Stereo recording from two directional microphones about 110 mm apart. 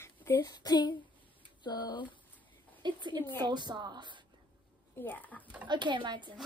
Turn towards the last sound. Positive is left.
turn(degrees=-45)  # may be behind; listen again after turning